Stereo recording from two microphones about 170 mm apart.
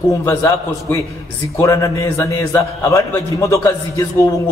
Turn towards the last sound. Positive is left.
turn(degrees=20)  # may be behind; listen again after turning